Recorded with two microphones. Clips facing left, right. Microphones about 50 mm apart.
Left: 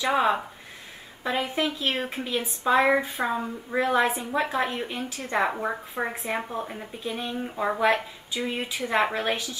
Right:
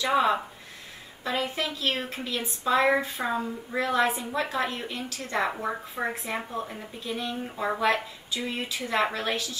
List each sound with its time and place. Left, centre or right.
0.0 s speech: centre
5.7 s speech: centre